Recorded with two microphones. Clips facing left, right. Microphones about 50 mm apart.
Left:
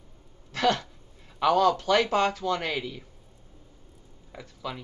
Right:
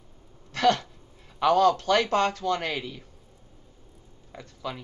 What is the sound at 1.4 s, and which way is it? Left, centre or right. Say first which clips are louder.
Speech: right 1 dB; centre.